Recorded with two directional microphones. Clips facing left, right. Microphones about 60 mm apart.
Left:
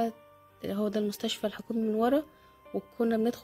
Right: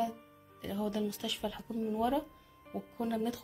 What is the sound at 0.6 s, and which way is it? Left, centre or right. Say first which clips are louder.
A woman's voice: left 5 dB; left.